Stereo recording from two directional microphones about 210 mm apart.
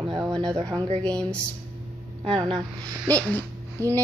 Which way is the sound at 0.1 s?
20° right (ahead or behind).